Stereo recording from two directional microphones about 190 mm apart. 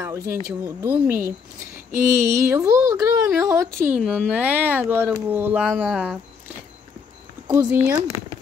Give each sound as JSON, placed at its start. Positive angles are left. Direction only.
{"t": 0.0, "sound": "speech", "side_deg": -15}
{"t": 7.4, "sound": "speech", "side_deg": -15}